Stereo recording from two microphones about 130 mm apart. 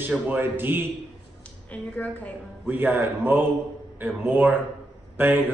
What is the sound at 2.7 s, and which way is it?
A man's voice, 15° right (ahead or behind).